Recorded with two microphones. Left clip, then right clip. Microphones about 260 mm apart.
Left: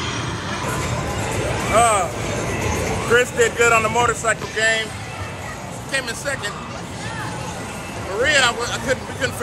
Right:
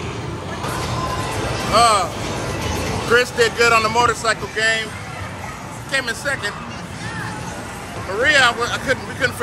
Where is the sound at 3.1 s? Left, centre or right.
Centre.